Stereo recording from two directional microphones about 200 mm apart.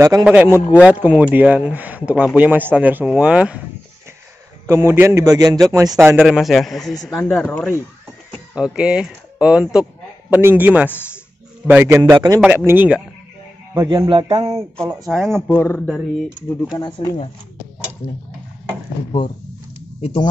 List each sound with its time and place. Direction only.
0.0 s speech: 10° right (ahead or behind)
4.6 s speech: 10° right (ahead or behind); by 7.8 s 5° left (ahead or behind)
8.5 s speech: 5° right (ahead or behind)
13.7 s speech: 20° right (ahead or behind)
14.9 s speech: centre (ahead or behind)
15.4 s speech: 10° left (ahead or behind)
16.7 s speech: 20° left (ahead or behind)
20.0 s speech: 30° left (ahead or behind)